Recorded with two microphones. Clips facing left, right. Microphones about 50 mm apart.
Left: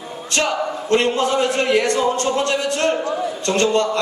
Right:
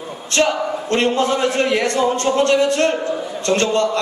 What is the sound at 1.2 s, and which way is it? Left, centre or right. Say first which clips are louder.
Music: right 1 dB; right.